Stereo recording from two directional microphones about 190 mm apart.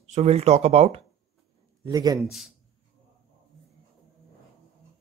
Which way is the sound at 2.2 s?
Centre (ahead or behind).